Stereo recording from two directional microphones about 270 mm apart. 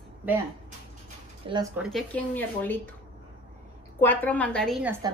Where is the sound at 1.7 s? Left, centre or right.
Centre.